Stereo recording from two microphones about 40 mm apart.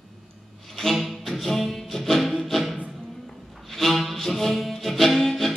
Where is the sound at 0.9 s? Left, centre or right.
Centre.